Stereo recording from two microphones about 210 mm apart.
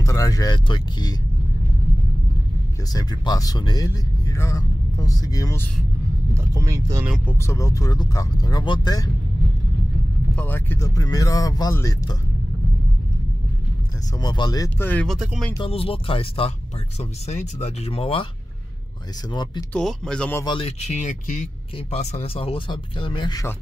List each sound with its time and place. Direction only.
0.0 s speech: 15° left (ahead or behind)
2.9 s speech: 20° left (ahead or behind)
6.3 s speech: 15° right (ahead or behind)
7.2 s speech: 15° left (ahead or behind)
10.3 s speech: 10° left (ahead or behind)
14.1 s speech: 20° left (ahead or behind); by 15.5 s centre (ahead or behind)
15.5 s speech: 25° left (ahead or behind)
19.3 s speech: 20° left (ahead or behind)
19.7 s speech: 5° left (ahead or behind)
20.4 s speech: 25° left (ahead or behind)